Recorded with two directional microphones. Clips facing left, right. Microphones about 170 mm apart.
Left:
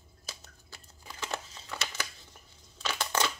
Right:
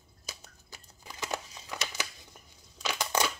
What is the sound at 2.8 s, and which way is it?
Crushing, 15° right (ahead or behind).